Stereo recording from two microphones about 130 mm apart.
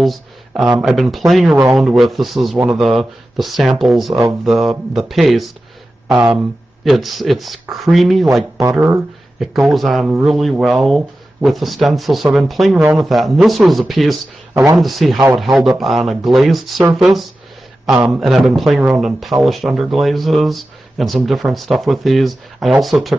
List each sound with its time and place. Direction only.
0.6 s speech: 5° right (ahead or behind)
14.5 s speech: 25° right (ahead or behind)
14.8 s a man's voice: centre (ahead or behind)